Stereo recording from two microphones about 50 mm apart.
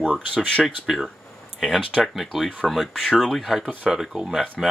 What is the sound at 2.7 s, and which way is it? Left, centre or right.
Speech, centre.